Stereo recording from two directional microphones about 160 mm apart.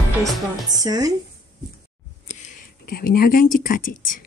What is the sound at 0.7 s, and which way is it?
Speech, 20° right (ahead or behind).